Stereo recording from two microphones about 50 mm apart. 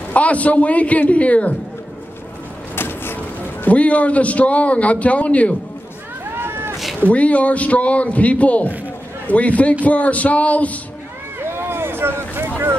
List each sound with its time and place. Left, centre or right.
0.1 s a man's voice: left
2.7 s vehicle: left
3.6 s a man's voice: left
6.3 s a sound: right
7.1 s a man's voice: left
11.3 s vehicle: right